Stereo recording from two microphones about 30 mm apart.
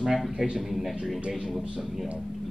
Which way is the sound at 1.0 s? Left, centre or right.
Centre.